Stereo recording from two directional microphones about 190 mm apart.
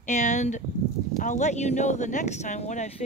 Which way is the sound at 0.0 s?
40° left (ahead or behind).